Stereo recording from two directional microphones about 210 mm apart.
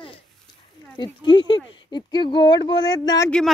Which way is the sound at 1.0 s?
20° left (ahead or behind).